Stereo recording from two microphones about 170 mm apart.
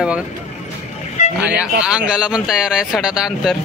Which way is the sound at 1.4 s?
10° right (ahead or behind).